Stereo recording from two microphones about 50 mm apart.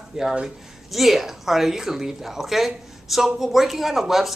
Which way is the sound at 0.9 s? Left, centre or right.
Centre.